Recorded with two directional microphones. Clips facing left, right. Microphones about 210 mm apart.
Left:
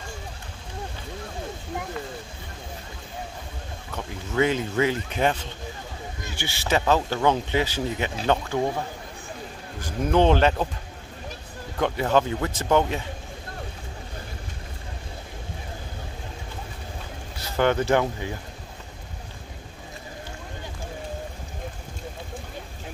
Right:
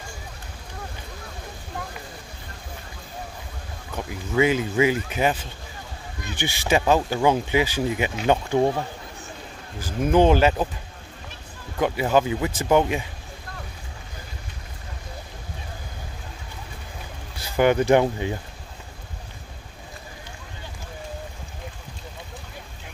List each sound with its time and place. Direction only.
3.9 s speech: 10° right (ahead or behind)
9.8 s speech: 5° right (ahead or behind)
11.8 s speech: 10° right (ahead or behind)
17.4 s speech: 10° right (ahead or behind)